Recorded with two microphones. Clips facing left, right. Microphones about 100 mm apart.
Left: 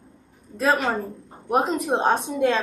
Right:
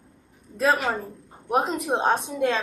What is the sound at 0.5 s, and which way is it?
A woman's voice, centre (ahead or behind).